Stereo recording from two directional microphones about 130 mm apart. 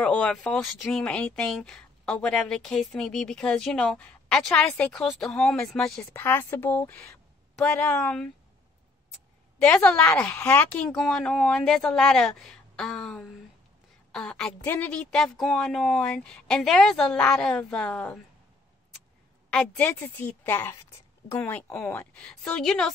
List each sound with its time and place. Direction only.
0.0 s speech: 5° left (ahead or behind)
6.1 s a woman's voice: 20° left (ahead or behind)
9.7 s a woman's voice: 10° left (ahead or behind)
19.5 s a woman's voice: 10° left (ahead or behind)